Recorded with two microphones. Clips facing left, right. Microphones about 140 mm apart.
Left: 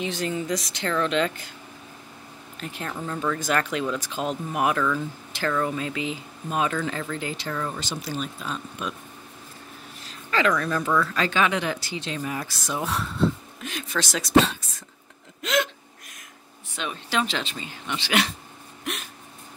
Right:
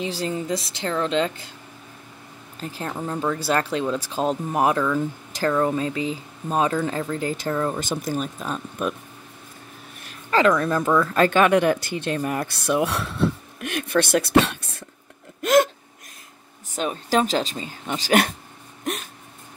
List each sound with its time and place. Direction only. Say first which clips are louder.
0.0 s speech: right 1 dB; 30° right (ahead or behind)
2.6 s speech: right 3 dB; 30° right (ahead or behind)
10.7 s speech: right 4 dB; 45° right (ahead or behind); by 14.8 s 65° right (ahead or behind)
15.4 s speech: right 8 dB; 50° right (ahead or behind)
16.7 s speech: right 6 dB; 40° right (ahead or behind)